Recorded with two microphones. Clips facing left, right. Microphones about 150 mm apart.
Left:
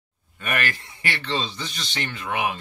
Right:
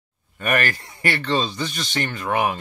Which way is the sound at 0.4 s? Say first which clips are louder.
Right 5 dB; 45° right (ahead or behind).